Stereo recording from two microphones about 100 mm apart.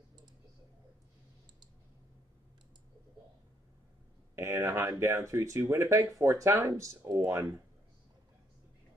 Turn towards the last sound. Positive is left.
turn(degrees=-35)  # may be behind; listen again after turning